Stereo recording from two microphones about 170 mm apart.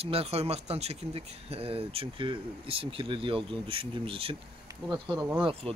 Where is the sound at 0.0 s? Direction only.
35° right (ahead or behind).